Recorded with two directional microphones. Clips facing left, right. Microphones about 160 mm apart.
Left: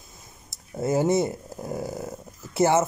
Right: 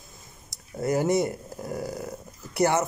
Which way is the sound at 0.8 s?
25° left (ahead or behind).